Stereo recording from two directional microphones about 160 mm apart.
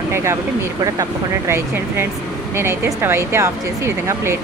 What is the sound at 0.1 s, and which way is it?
Speech, 15° right (ahead or behind).